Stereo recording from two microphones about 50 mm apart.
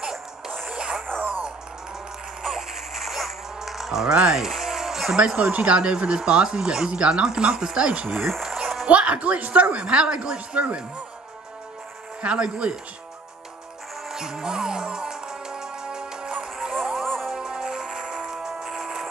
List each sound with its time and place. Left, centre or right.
0.7 s music: centre
2.4 s a sound: centre
4.1 s music: centre
5.2 s speech: centre
8.2 s speech: centre
8.5 s music: centre
8.8 s speech: right
12.2 s speech: centre
14.0 s music: centre
16.5 s music: centre
17.4 s music: centre